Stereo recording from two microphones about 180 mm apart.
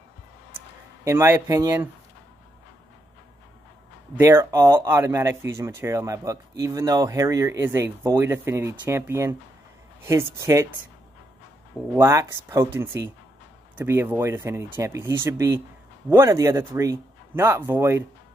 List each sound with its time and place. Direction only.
1.0 s a man's voice: 10° right (ahead or behind)
4.2 s a man's voice: 15° right (ahead or behind)
11.9 s a man's voice: 15° right (ahead or behind)